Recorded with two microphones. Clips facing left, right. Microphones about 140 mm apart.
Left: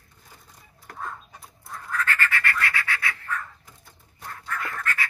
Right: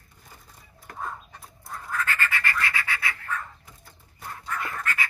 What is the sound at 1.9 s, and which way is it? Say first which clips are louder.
Scratch: left 2 dB; 20° right (ahead or behind).